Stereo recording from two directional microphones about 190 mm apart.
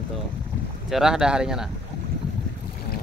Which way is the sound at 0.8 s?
Centre (ahead or behind).